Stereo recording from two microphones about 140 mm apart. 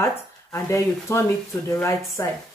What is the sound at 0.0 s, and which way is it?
Speech, 20° left (ahead or behind).